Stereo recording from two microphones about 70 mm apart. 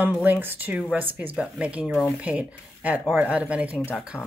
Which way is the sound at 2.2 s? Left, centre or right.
Right.